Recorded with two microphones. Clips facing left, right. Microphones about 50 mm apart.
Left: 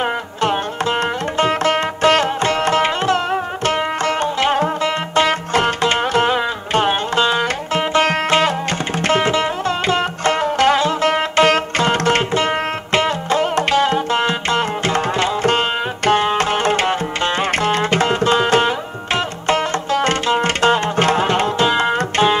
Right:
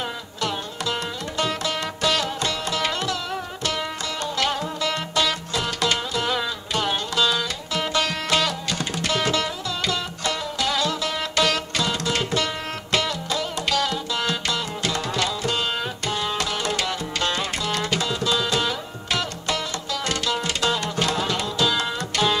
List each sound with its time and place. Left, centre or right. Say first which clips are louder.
0.0 s music: left 9 dB; left
9.7 s music: left 9 dB; left
10.8 s music: left 8 dB; left
12.3 s music: left 8 dB; left